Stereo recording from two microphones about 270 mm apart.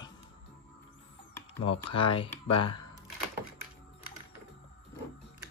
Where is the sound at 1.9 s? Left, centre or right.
Centre.